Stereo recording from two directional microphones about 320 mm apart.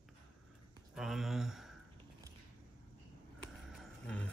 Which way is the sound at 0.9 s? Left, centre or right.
Centre.